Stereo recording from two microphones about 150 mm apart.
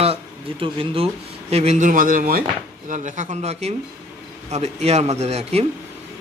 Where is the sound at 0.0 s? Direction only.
40° right (ahead or behind); by 2.4 s 70° right (ahead or behind).